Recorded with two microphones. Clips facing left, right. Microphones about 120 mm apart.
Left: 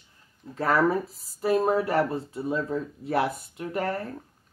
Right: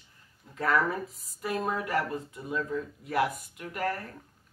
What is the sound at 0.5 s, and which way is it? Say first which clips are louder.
Speech: left 5 dB; 35° left (ahead or behind).